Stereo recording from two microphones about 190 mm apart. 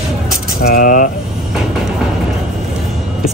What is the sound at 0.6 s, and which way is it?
Speech, 45° left (ahead or behind).